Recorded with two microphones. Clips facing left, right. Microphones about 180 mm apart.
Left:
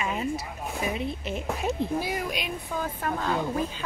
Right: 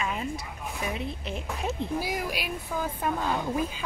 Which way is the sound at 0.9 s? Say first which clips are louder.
Left 3 dB; centre (ahead or behind).